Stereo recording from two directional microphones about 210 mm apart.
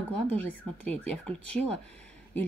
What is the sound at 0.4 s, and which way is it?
Speech, 5° left (ahead or behind).